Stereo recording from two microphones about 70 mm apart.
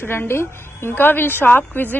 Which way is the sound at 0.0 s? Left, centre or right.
Left.